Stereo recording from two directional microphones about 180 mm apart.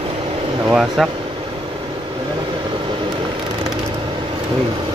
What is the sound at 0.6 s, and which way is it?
Speech, centre (ahead or behind).